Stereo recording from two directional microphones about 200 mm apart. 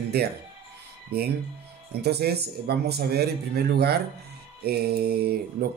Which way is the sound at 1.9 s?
55° right (ahead or behind).